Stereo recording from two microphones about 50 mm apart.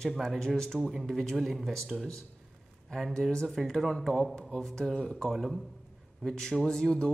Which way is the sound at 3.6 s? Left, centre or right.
Centre.